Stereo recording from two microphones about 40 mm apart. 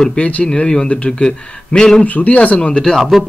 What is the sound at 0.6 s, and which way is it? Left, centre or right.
Speech, centre.